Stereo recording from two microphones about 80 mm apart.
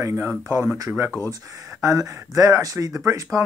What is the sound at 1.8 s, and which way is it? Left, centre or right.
Speech, right.